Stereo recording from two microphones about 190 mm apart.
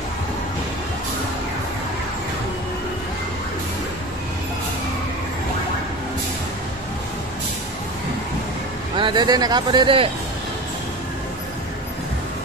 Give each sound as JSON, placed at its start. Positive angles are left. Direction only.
{"t": 8.9, "sound": "speech", "side_deg": -25}